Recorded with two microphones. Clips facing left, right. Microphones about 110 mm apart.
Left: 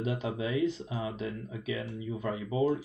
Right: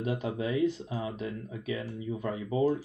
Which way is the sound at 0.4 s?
40° right (ahead or behind).